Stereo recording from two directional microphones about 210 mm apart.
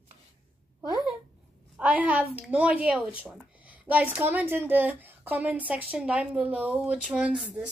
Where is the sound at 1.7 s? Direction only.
5° right (ahead or behind).